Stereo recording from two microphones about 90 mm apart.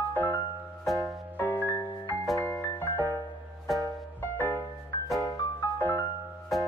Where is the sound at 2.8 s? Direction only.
20° left (ahead or behind).